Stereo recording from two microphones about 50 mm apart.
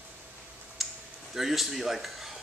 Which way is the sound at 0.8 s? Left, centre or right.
Centre.